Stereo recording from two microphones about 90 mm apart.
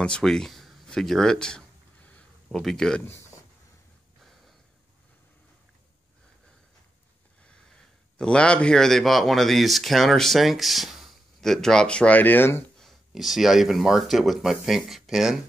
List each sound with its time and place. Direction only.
0.0 s speech: 5° left (ahead or behind)
2.0 s a sound: 15° left (ahead or behind)
2.6 s speech: 5° left (ahead or behind)
8.2 s speech: 10° left (ahead or behind); by 12.6 s 25° left (ahead or behind)
12.7 s speech: centre (ahead or behind)